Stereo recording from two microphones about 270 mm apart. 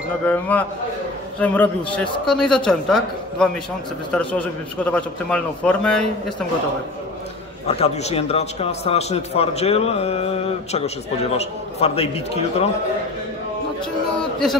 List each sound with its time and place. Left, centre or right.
0.2 s a man's voice: centre
7.6 s a man's voice: left